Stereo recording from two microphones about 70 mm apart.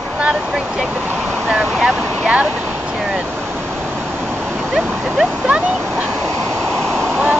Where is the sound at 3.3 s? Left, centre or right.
Right.